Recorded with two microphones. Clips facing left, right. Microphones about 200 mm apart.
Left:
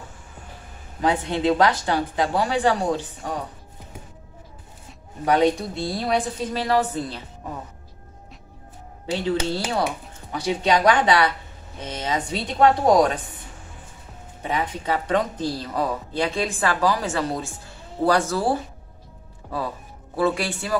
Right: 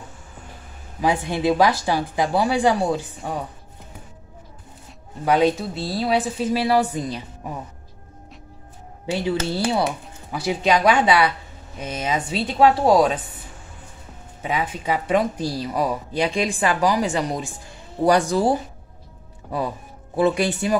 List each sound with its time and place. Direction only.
1.0 s speech: 10° right (ahead or behind)
5.2 s speech: 5° right (ahead or behind)
9.5 s speech: 10° right (ahead or behind)
14.4 s speech: 10° right (ahead or behind)
20.2 s speech: 20° right (ahead or behind)